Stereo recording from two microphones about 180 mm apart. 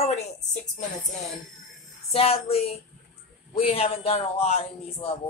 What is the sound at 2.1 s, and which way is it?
Speech, 35° left (ahead or behind).